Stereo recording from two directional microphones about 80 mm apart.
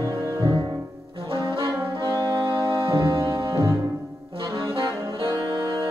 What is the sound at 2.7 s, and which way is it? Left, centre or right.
Music, right.